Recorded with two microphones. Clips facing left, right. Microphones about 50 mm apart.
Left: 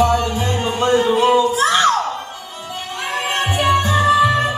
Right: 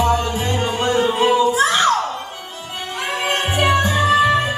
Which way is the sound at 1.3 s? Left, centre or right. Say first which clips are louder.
Left 1 dB; right.